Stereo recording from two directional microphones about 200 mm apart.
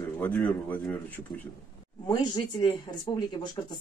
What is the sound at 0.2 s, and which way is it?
Speech, 10° left (ahead or behind).